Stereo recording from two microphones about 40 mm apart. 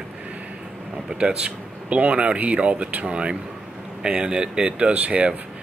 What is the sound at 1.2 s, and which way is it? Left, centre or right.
Speech, right.